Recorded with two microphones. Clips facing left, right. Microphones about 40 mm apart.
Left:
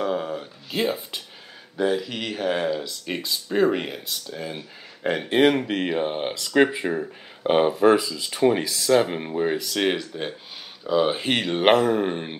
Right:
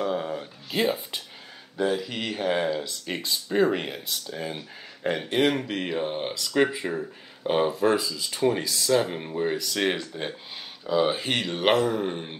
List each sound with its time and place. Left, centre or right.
0.0 s a sound: centre
0.7 s speech: centre
5.0 s speech: centre
11.1 s speech: centre